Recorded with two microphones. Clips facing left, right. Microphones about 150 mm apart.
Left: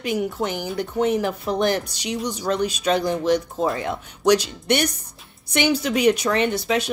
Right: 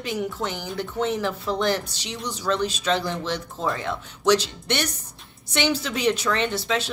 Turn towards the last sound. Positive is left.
turn(degrees=15)  # may be behind; listen again after turning